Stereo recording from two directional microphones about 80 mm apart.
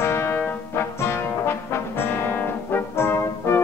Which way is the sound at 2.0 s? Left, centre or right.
Left.